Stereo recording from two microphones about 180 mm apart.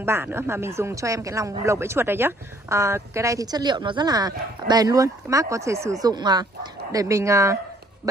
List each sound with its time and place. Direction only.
0.0 s speech: 15° right (ahead or behind)